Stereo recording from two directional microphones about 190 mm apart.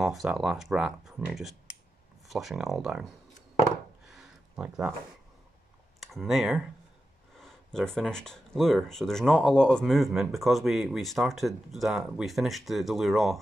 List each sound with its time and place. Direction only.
0.0 s speech: centre (ahead or behind)
4.0 s a sound: centre (ahead or behind)
5.9 s speech: centre (ahead or behind)